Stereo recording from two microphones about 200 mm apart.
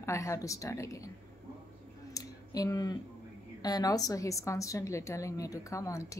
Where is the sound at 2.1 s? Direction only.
15° left (ahead or behind).